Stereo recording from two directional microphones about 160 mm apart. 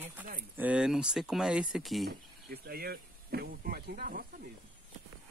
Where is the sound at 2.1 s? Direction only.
80° right; by 4.2 s 65° right (ahead or behind).